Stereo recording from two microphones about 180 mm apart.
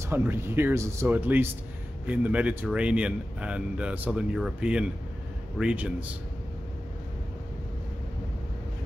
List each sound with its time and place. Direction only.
0.0 s speech: 10° right (ahead or behind)